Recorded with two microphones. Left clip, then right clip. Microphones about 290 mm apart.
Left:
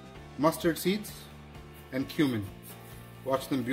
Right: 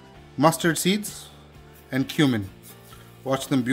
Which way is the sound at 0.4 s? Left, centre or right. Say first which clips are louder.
Right 7 dB; right.